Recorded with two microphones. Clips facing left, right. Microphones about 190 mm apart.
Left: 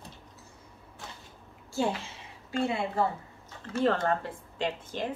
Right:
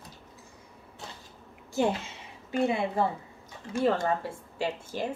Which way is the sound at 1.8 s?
20° right (ahead or behind).